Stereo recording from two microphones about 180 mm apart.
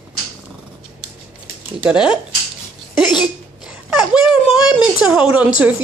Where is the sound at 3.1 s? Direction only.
5° right (ahead or behind).